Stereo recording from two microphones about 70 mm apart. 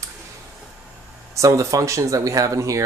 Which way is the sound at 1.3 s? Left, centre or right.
Right.